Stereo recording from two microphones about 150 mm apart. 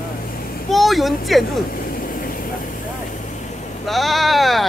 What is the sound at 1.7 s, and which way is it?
Vehicle, 75° left (ahead or behind).